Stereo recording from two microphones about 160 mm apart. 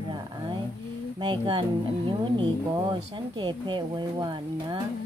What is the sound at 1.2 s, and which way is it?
Speech, 30° right (ahead or behind).